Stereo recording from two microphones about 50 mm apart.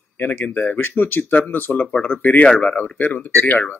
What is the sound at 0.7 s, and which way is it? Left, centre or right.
Speech, left.